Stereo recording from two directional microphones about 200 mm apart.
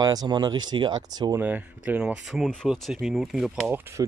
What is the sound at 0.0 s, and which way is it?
Speech, 20° right (ahead or behind).